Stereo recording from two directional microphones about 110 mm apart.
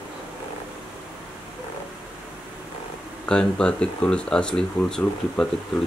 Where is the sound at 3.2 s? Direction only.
5° left (ahead or behind).